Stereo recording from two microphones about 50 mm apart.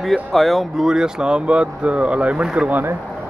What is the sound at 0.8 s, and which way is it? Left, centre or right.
Speech, centre.